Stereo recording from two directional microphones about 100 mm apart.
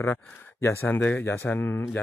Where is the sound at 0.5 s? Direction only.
30° left (ahead or behind).